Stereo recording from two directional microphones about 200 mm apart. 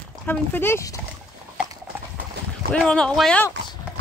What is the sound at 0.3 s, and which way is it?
Speech, 10° left (ahead or behind).